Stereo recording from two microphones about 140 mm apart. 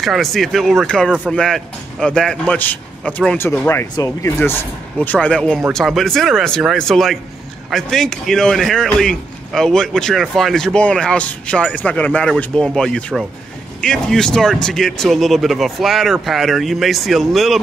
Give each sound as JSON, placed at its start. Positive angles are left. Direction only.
{"t": 0.0, "sound": "a man's voice", "side_deg": 0}
{"t": 3.9, "sound": "speech", "side_deg": 25}
{"t": 5.0, "sound": "a man's voice", "side_deg": 10}